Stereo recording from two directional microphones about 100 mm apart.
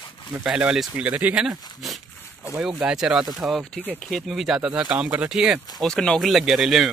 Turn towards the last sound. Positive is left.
turn(degrees=0)  # may be behind; listen again after turning